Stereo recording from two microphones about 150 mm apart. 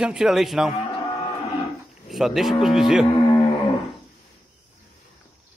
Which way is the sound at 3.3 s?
30° left (ahead or behind).